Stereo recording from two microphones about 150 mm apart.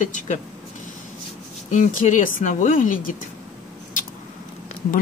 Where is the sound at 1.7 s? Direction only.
55° left (ahead or behind).